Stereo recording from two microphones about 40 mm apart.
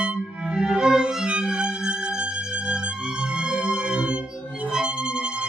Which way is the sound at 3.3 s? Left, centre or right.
Right.